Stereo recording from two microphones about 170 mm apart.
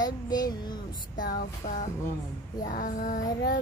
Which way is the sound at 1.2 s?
55° left (ahead or behind).